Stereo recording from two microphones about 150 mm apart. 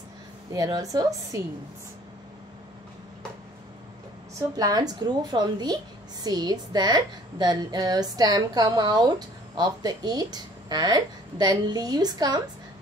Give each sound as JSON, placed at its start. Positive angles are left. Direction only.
{"t": 0.5, "sound": "a woman's voice", "side_deg": -25}
{"t": 4.4, "sound": "a woman's voice", "side_deg": -25}